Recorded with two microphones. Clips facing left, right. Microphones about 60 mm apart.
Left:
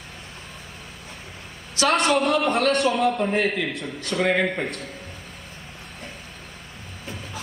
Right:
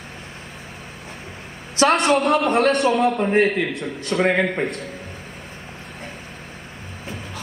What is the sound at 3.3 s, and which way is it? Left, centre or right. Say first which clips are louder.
Speech: right 5 dB; right.